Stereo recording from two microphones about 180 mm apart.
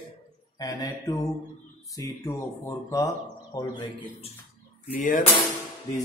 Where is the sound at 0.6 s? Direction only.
20° left (ahead or behind).